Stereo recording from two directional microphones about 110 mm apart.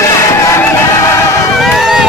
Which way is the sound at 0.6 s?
25° left (ahead or behind).